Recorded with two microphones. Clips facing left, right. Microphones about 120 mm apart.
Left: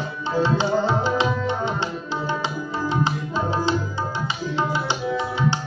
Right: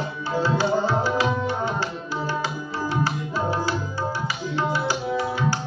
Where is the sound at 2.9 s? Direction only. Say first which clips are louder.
Left 1 dB; 20° left (ahead or behind).